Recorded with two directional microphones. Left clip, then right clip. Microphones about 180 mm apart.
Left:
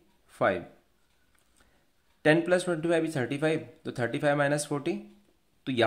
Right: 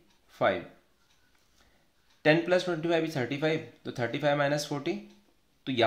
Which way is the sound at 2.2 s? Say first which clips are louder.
Left 1 dB; 20° left (ahead or behind).